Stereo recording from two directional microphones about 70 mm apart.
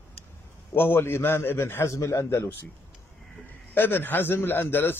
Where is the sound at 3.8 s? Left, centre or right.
Left.